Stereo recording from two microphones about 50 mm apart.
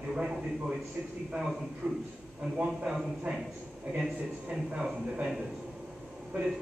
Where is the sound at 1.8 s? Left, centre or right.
Right.